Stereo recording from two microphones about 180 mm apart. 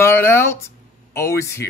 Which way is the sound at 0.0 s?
15° left (ahead or behind).